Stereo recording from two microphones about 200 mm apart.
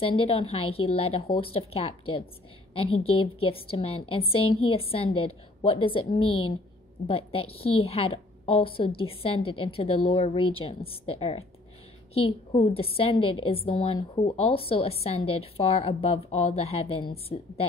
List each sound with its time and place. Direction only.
0.0 s a woman's voice: 25° left (ahead or behind)